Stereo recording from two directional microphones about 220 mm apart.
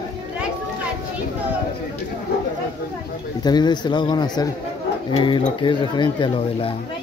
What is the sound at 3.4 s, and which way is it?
Speech, 20° left (ahead or behind).